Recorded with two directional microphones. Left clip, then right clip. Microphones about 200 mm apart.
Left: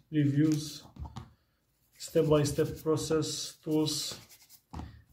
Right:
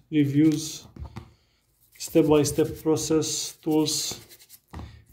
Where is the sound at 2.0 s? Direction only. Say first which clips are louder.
Right 6 dB; 45° right (ahead or behind).